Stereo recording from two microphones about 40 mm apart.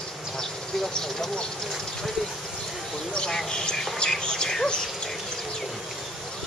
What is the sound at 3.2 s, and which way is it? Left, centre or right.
Speech, centre.